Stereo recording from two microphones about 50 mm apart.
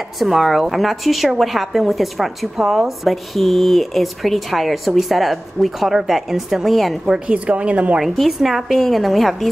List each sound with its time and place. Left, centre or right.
0.2 s speech: centre
7.1 s a woman's voice: right
8.0 s speech: centre